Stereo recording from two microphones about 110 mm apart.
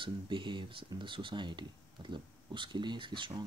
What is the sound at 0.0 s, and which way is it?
Speech, 45° right (ahead or behind).